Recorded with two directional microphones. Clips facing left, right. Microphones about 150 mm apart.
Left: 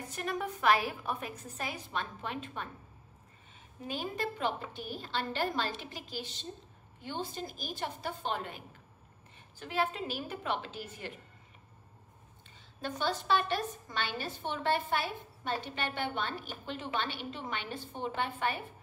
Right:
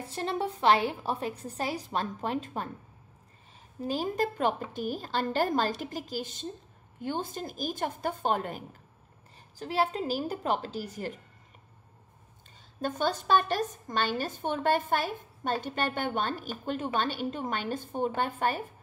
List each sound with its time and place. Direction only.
0.0 s a woman's voice: 30° right (ahead or behind)
3.8 s a woman's voice: 40° right (ahead or behind)
9.6 s a woman's voice: 35° right (ahead or behind)
12.8 s a woman's voice: 45° right (ahead or behind)